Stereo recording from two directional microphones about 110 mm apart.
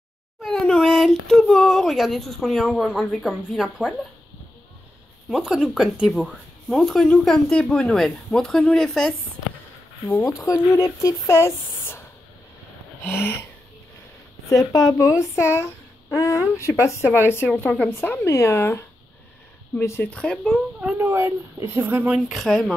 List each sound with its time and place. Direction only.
0.4 s speech: 5° left (ahead or behind)
5.3 s speech: 5° right (ahead or behind)
10.4 s speech: 25° left (ahead or behind)
13.0 s speech: 20° left (ahead or behind)
14.5 s speech: 35° left (ahead or behind)
17.6 s speech: 15° left (ahead or behind)
20.1 s speech: 10° left (ahead or behind)
20.8 s speech: 25° right (ahead or behind)
22.3 s speech: centre (ahead or behind)